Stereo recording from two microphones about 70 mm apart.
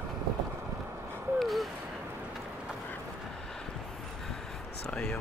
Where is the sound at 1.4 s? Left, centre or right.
Centre.